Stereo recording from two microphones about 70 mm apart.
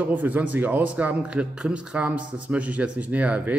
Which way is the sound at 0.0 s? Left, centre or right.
Right.